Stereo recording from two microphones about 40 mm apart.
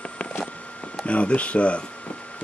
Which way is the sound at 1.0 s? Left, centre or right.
Left.